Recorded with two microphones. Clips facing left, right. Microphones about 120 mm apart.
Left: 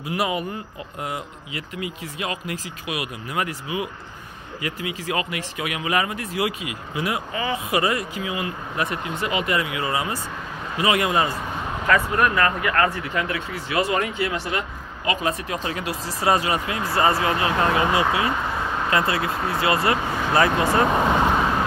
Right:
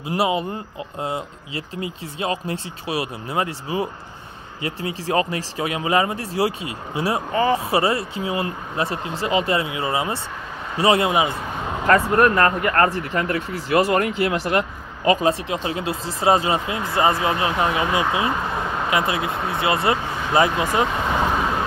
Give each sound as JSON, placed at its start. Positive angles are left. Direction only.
{"t": 0.0, "sound": "speech", "side_deg": -25}
{"t": 15.0, "sound": "speech", "side_deg": -25}